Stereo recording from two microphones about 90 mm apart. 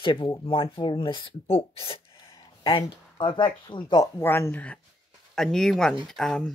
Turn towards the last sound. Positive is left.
turn(degrees=5)  # may be behind; listen again after turning